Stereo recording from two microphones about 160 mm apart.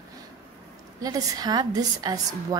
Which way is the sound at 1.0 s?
25° right (ahead or behind).